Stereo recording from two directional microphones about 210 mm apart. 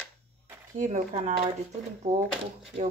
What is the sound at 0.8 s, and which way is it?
Speech, 35° right (ahead or behind).